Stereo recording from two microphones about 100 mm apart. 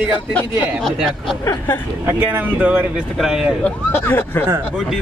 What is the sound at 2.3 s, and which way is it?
Speech, 15° right (ahead or behind).